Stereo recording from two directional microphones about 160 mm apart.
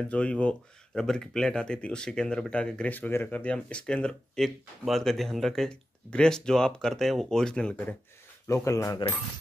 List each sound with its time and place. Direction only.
0.0 s speech: 5° left (ahead or behind)
8.5 s speech: 20° left (ahead or behind)